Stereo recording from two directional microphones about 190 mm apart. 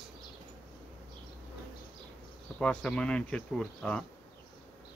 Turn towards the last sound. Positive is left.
turn(degrees=5)  # may be behind; listen again after turning